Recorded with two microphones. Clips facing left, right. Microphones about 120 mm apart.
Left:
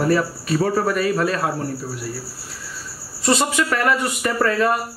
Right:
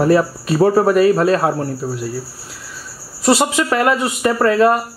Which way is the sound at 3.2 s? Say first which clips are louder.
Right 4 dB; 30° right (ahead or behind).